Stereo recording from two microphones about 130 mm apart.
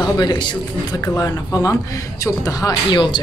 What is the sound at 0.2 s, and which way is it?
A woman's voice, 35° left (ahead or behind).